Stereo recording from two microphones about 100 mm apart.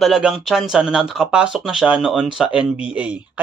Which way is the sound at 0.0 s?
5° right (ahead or behind).